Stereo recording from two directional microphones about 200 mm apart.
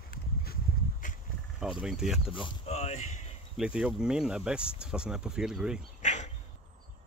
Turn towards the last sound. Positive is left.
turn(degrees=35)  # may be behind; listen again after turning